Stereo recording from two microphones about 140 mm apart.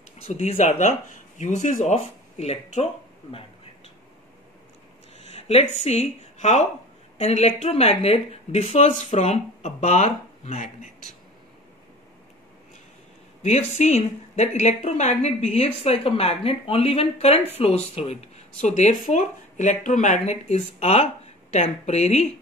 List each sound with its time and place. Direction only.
0.2 s speech: 50° left (ahead or behind)
5.1 s a sound: 50° left (ahead or behind)
7.2 s a woman's voice: 50° left (ahead or behind)
13.4 s a woman's voice: 50° left (ahead or behind)